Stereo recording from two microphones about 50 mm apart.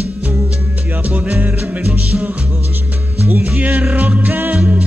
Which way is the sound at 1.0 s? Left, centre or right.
Right.